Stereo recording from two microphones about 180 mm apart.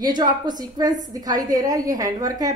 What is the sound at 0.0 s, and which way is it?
A woman's voice, 25° right (ahead or behind).